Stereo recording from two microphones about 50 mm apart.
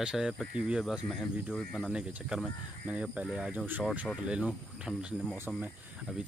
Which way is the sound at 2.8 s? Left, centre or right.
Right.